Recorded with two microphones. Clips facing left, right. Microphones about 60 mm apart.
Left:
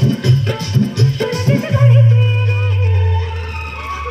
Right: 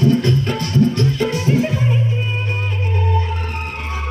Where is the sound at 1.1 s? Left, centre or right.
Centre.